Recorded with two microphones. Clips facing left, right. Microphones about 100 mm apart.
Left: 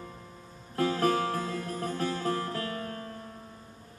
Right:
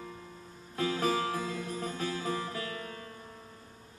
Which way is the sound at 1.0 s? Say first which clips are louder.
Left 3 dB; centre (ahead or behind).